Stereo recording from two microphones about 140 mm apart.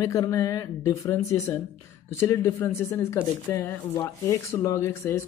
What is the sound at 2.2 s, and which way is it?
Speech, 20° left (ahead or behind).